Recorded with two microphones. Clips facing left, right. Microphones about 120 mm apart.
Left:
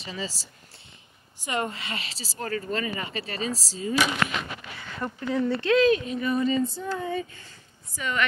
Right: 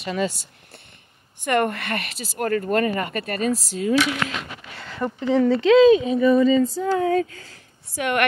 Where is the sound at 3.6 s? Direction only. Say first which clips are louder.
Right 5 dB; 70° right (ahead or behind).